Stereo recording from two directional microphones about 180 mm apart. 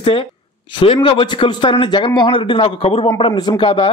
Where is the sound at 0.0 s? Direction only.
30° left (ahead or behind).